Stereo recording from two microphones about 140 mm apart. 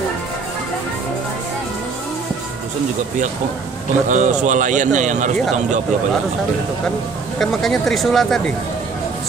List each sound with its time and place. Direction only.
4.1 s a man's voice: 60° right (ahead or behind)
7.3 s speech: centre (ahead or behind)